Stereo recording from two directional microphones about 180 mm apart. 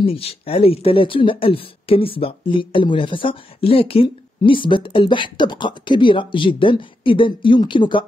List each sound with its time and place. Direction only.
0.0 s speech: 30° left (ahead or behind)